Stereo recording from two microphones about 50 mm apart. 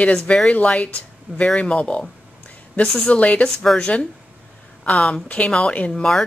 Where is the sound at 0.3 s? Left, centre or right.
Left.